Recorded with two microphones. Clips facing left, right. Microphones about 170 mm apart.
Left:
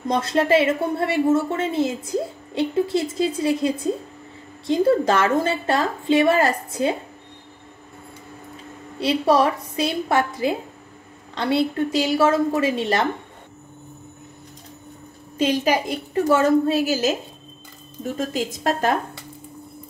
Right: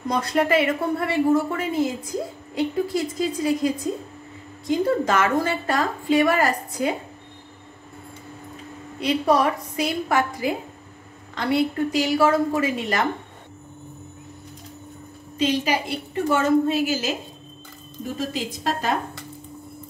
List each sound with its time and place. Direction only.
0.1 s speech: 25° left (ahead or behind)
9.0 s speech: 30° left (ahead or behind)
15.3 s a woman's voice: 45° left (ahead or behind)